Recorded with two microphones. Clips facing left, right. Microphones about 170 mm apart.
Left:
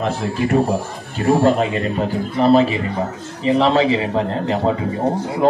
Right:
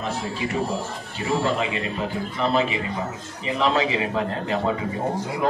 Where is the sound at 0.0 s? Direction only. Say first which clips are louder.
Left 7 dB; 55° left (ahead or behind).